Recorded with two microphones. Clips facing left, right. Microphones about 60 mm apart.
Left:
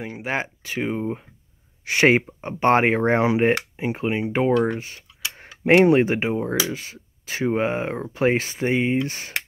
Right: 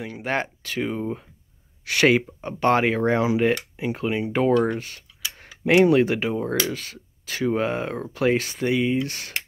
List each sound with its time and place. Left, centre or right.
0.2 s speech: centre
4.8 s a sound: left
5.9 s speech: left